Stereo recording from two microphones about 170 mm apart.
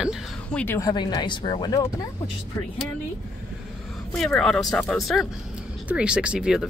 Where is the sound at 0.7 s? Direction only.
25° left (ahead or behind).